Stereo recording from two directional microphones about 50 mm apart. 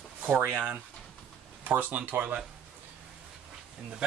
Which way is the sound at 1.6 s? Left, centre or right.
Right.